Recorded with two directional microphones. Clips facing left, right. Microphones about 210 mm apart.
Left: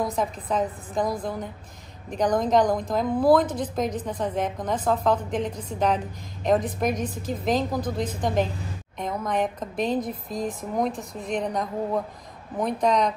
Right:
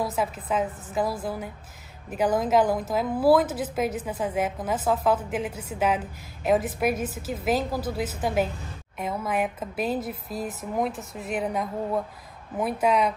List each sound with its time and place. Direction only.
0.0 s a woman's voice: 5° right (ahead or behind)
10.9 s speech: 35° left (ahead or behind)
11.2 s a woman's voice: 5° right (ahead or behind)